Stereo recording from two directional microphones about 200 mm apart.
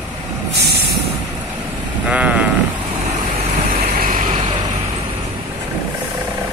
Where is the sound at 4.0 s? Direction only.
40° right (ahead or behind).